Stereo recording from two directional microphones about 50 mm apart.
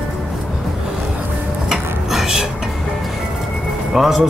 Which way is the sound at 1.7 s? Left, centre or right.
Centre.